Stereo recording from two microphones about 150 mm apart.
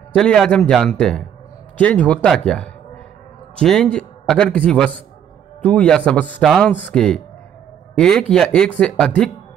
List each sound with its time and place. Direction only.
0.1 s a man's voice: 5° left (ahead or behind)